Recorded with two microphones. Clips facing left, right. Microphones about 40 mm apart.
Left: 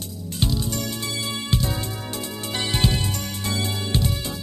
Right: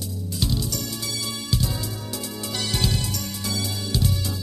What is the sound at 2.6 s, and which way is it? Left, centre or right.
Music, left.